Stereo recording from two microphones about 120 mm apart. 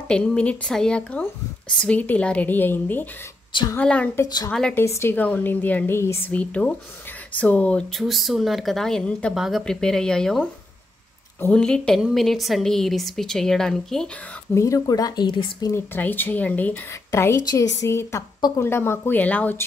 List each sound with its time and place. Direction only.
0.1 s a woman's voice: 10° left (ahead or behind)
4.7 s a woman's voice: 20° left (ahead or behind); by 10.5 s 5° left (ahead or behind)
11.5 s a woman's voice: 5° left (ahead or behind)
14.5 s speech: 25° left (ahead or behind)
15.7 s a woman's voice: 15° left (ahead or behind)
16.9 s speech: 25° left (ahead or behind)